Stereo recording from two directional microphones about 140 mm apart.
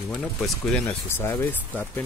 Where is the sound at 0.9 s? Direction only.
15° left (ahead or behind).